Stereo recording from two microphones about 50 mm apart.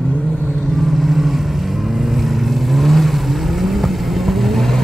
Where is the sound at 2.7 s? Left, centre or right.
Centre.